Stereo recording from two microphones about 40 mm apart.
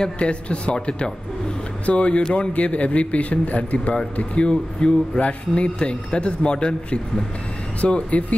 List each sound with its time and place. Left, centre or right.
0.0 s a man's voice: left
7.8 s a man's voice: left